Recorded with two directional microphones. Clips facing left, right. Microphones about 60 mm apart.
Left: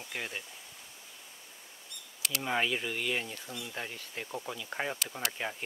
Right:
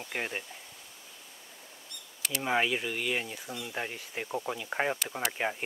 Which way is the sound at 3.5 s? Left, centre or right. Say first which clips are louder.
Right 4 dB; centre.